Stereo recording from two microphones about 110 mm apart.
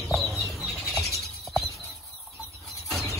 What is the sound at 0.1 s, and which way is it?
Bird flight, centre (ahead or behind).